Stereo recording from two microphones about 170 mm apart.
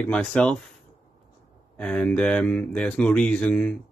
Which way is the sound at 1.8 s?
5° left (ahead or behind).